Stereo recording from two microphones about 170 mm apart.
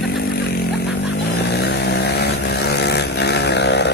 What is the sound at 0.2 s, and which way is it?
Vehicle, 75° left (ahead or behind).